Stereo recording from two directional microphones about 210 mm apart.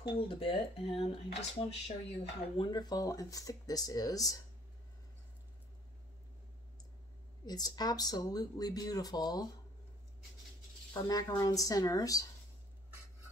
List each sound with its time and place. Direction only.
0.3 s speech: 25° left (ahead or behind)
7.4 s speech: 20° left (ahead or behind)
10.9 s speech: 15° left (ahead or behind)